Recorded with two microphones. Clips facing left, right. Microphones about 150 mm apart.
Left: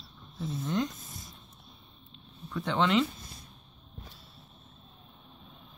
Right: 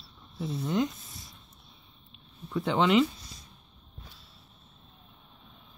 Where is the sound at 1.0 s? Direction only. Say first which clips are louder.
Left 2 dB; 45° left (ahead or behind).